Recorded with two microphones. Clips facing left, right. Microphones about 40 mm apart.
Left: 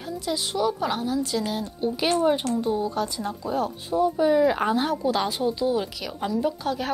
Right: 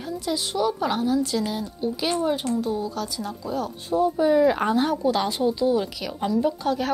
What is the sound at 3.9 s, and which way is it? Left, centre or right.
A woman's voice, centre.